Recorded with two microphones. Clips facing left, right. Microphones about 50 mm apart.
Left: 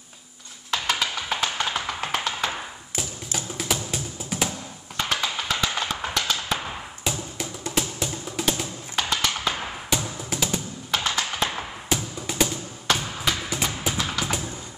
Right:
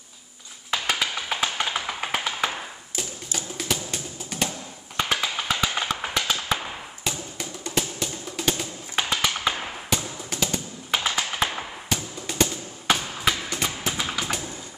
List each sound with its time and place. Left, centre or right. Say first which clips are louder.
0.7 s tap: even; centre
3.0 s music: left 1 dB; centre
4.9 s music: right 1 dB; centre
6.1 s tap: even; centre
6.6 s music: left 1 dB; centre
8.9 s tap: even; centre
9.6 s music: left 1 dB; centre
10.9 s computer keyboard: even; centre
11.9 s music: left 2 dB; centre
12.8 s a sound: right 1 dB; centre
13.5 s tap: left 1 dB; centre
13.9 s a sound: left 1 dB; centre